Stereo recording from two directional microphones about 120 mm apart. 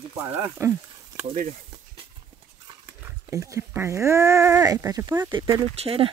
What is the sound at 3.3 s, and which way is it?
Speech, 25° right (ahead or behind).